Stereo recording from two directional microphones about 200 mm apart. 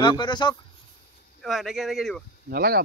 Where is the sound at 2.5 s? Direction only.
50° right (ahead or behind).